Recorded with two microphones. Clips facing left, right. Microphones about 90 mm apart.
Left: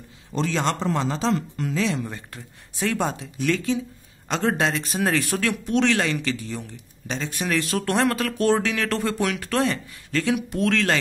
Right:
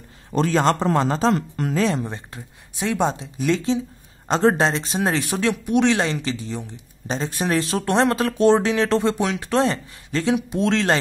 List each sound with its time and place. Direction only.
0.3 s speech: 45° right (ahead or behind)
2.0 s speech: 25° right (ahead or behind)
7.1 s speech: 35° right (ahead or behind)